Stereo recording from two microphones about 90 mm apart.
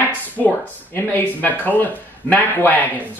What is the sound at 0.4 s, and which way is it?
Speech, 20° left (ahead or behind).